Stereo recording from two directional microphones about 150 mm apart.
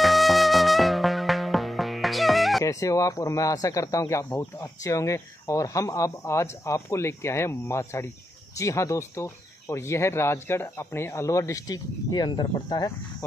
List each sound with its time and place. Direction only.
0.0 s music: centre (ahead or behind)
2.6 s speech: 20° left (ahead or behind)